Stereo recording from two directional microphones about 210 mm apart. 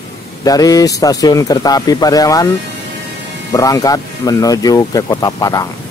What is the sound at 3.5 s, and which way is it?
Speech, 15° left (ahead or behind).